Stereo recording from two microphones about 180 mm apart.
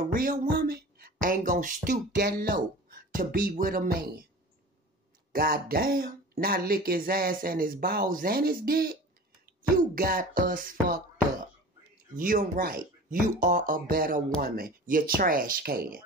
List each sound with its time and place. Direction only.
0.1 s a sound: 50° right (ahead or behind)
1.2 s speech: 45° right (ahead or behind)
2.1 s speech: 60° right (ahead or behind)
5.3 s speech: 55° right (ahead or behind)
12.2 s speech: 50° right (ahead or behind)